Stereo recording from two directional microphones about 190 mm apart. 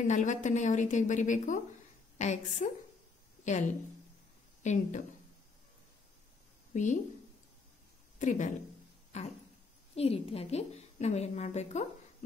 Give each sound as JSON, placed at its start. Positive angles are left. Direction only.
{"t": 0.0, "sound": "a woman's voice", "side_deg": 40}
{"t": 6.7, "sound": "a woman's voice", "side_deg": 40}
{"t": 8.2, "sound": "a woman's voice", "side_deg": 40}